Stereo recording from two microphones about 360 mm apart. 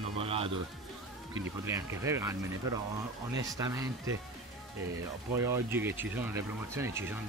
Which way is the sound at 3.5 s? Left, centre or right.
Centre.